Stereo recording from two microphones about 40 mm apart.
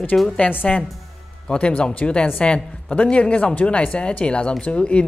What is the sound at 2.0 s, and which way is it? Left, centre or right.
Speech, left.